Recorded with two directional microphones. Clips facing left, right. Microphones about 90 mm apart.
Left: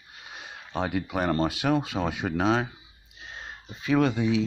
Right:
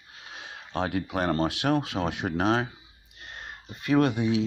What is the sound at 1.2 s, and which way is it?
Speech, 85° right.